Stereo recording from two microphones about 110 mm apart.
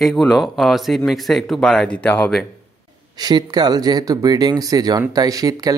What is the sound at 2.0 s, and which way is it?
Speech, 15° left (ahead or behind).